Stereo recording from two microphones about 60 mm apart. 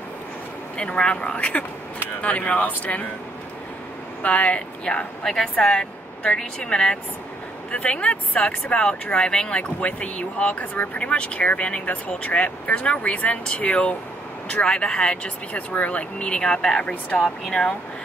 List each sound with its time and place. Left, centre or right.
0.7 s speech: centre
4.2 s speech: left